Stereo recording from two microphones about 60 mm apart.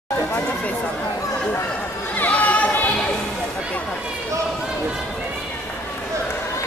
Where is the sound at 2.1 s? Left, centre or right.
Left.